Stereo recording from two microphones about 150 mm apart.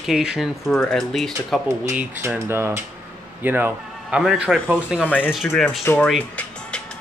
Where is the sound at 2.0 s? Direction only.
15° right (ahead or behind).